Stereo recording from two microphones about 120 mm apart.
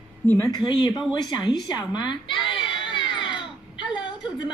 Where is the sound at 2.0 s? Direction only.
40° left (ahead or behind).